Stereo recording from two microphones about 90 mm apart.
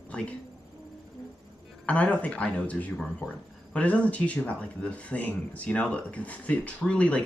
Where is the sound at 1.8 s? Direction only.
15° left (ahead or behind).